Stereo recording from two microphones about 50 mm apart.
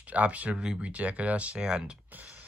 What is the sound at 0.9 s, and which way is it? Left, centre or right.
Speech, right.